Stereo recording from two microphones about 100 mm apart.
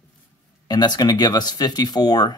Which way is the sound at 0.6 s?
45° left (ahead or behind).